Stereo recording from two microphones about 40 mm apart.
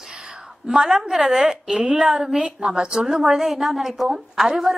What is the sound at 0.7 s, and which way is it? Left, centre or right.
A woman's voice, centre.